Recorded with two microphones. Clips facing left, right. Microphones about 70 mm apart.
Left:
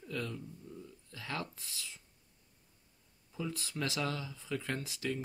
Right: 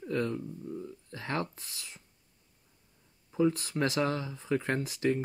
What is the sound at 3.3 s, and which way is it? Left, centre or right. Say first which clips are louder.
Speech: right 12 dB; right.